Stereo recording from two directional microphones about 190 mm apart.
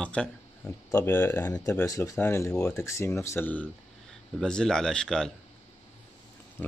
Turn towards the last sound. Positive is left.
turn(degrees=5)  # may be behind; listen again after turning